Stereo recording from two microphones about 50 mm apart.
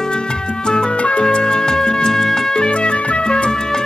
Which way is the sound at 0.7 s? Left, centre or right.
Centre.